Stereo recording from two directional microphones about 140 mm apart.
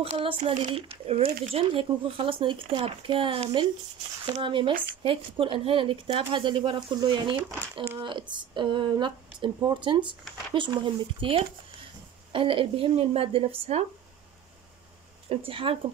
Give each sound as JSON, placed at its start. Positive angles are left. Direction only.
{"t": 0.0, "sound": "speech", "side_deg": -40}
{"t": 15.2, "sound": "speech", "side_deg": -40}